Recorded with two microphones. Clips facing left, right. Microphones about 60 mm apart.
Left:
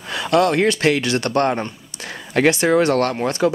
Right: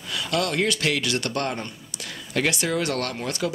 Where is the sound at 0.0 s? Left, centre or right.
Left.